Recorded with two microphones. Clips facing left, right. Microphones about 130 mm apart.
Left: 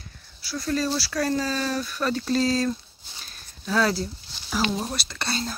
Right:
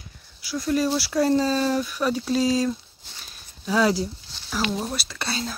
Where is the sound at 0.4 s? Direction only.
15° right (ahead or behind).